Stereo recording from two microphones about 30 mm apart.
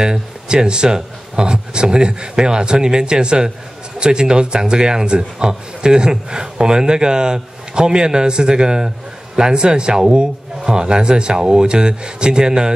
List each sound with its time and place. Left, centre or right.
0.0 s a man's voice: right